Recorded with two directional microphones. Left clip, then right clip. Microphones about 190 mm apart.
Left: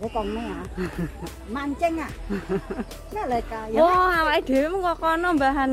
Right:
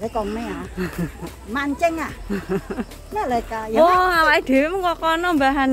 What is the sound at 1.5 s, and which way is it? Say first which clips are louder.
Speech: right 4 dB; 25° right (ahead or behind).